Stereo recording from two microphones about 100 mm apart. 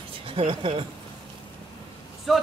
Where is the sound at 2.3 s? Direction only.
Centre (ahead or behind).